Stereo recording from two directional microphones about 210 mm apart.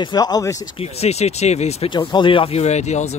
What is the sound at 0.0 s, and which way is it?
Speech, 20° left (ahead or behind).